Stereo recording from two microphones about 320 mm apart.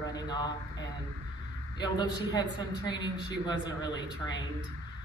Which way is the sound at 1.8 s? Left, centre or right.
Centre.